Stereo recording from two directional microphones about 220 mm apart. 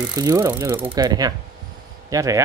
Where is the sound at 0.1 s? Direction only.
15° right (ahead or behind).